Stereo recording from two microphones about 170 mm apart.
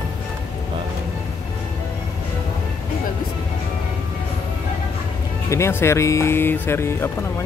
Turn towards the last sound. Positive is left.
turn(degrees=15)  # may be behind; listen again after turning